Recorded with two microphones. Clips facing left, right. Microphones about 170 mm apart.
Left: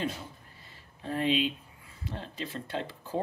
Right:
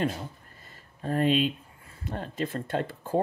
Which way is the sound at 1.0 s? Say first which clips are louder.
Right 4 dB; 45° right (ahead or behind).